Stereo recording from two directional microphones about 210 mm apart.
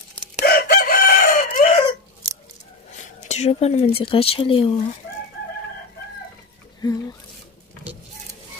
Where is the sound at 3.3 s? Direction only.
30° left (ahead or behind).